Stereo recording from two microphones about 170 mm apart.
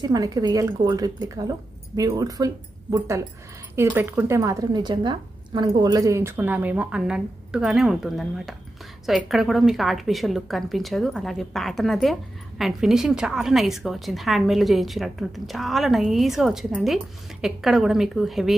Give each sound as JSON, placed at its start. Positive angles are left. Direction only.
{"t": 0.0, "sound": "a woman's voice", "side_deg": -20}